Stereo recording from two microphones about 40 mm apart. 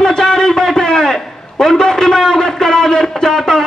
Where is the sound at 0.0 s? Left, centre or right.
Centre.